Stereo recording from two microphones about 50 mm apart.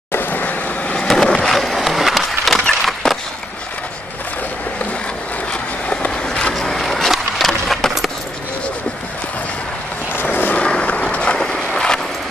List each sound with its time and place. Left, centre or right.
0.1 s vehicle: left
0.9 s skateboard: centre
1.4 s a sound: centre
5.5 s vehicle: left
6.6 s a sound: centre
10.2 s vehicle: left
10.6 s vehicle: left
11.3 s skateboard: centre